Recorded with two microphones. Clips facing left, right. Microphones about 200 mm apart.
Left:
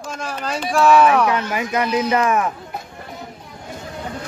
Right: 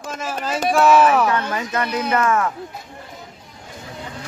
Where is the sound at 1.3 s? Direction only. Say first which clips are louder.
Left 1 dB; 15° left (ahead or behind).